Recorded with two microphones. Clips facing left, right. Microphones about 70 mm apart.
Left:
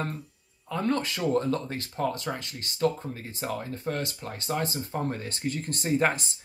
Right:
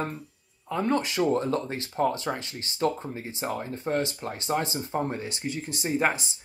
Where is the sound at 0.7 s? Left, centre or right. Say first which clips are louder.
Right 2 dB; centre.